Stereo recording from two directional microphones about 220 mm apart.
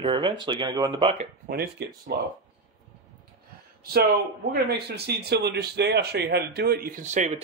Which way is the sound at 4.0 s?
45° right (ahead or behind).